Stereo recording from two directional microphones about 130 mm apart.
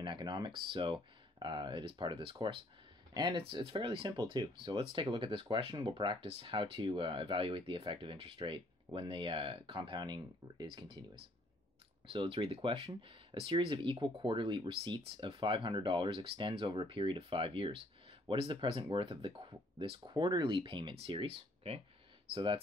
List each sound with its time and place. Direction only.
0.0 s speech: 35° right (ahead or behind)
12.1 s speech: 45° right (ahead or behind)